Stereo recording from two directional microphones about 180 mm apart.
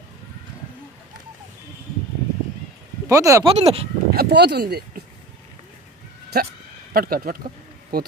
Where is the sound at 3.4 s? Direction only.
35° right (ahead or behind).